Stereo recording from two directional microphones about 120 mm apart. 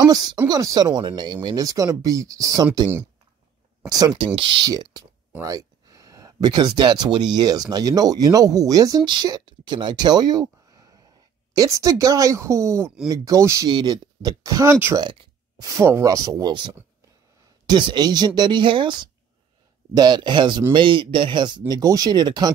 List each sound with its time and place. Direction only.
0.0 s speech: 35° right (ahead or behind)
4.4 s a woman's voice: 45° right (ahead or behind); by 13.7 s 25° right (ahead or behind)
13.7 s a woman's voice: 35° right (ahead or behind); by 15.0 s 20° right (ahead or behind)
15.0 s a sound: 40° right (ahead or behind)
15.8 s a woman's voice: 25° right (ahead or behind)
17.6 s speech: 40° right (ahead or behind)